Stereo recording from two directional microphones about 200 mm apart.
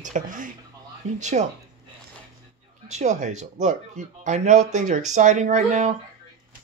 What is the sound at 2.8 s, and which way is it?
Speech, 35° right (ahead or behind).